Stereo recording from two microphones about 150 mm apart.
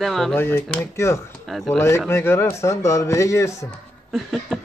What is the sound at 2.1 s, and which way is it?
Speech, 15° left (ahead or behind).